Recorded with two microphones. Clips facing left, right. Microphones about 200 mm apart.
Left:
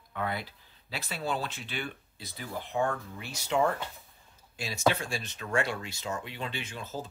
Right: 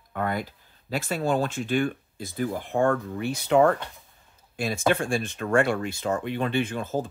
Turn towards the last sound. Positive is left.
turn(degrees=-50)  # may be behind; listen again after turning